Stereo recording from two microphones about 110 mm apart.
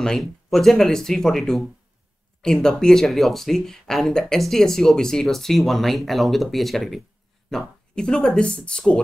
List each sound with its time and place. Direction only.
0.0 s speech: 5° left (ahead or behind)